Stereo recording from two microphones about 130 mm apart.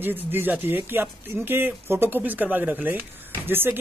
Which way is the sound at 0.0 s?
15° right (ahead or behind).